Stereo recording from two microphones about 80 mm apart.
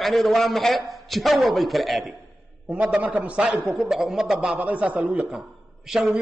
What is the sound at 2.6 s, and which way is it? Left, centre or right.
A man's voice, centre.